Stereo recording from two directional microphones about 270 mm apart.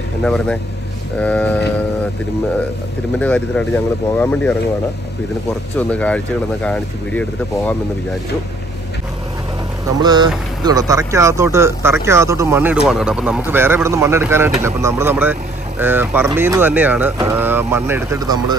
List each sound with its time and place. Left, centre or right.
0.2 s speech: centre
3.2 s speech: centre
5.8 s speech: centre
9.9 s speech: centre